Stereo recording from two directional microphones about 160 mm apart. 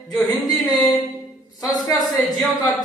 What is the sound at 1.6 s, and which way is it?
Speech, 20° left (ahead or behind).